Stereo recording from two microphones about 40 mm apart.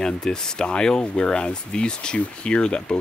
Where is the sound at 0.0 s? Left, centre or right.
Centre.